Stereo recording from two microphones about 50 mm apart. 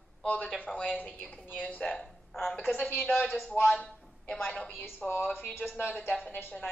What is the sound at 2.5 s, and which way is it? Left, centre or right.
Speech, left.